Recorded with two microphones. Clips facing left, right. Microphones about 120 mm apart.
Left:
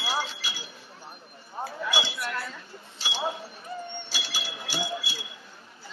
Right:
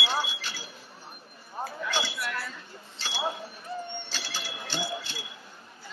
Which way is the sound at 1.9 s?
10° left (ahead or behind).